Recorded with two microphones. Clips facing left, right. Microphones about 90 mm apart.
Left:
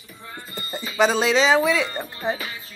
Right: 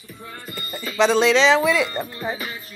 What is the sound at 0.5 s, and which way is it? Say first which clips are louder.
Music: even; 25° left (ahead or behind).